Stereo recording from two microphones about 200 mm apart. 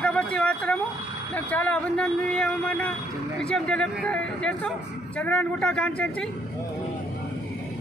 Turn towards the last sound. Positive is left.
turn(degrees=5)  # may be behind; listen again after turning